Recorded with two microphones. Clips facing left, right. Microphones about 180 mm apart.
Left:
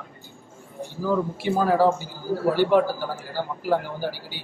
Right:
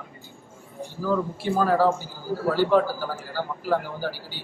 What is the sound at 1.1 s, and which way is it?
A man's voice, 15° left (ahead or behind).